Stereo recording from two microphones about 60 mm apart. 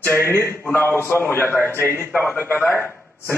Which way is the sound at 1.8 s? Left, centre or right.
Right.